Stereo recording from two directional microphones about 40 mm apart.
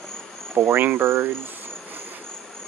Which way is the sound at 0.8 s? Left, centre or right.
Right.